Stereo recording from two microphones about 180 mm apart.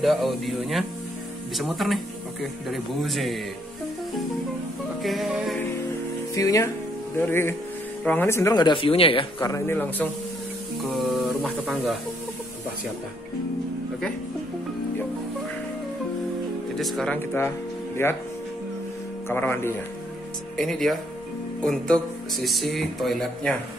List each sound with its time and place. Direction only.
0.0 s speech: centre (ahead or behind)
5.0 s speech: centre (ahead or behind)
6.3 s speech: 20° left (ahead or behind)
9.4 s speech: 15° left (ahead or behind)
10.8 s music: centre (ahead or behind)
16.7 s speech: centre (ahead or behind)
19.2 s speech: 10° left (ahead or behind)
20.5 s speech: centre (ahead or behind)